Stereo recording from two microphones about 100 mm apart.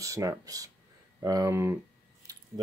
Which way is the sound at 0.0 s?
35° right (ahead or behind).